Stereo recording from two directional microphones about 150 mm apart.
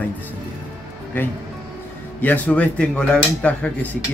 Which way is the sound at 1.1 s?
15° left (ahead or behind).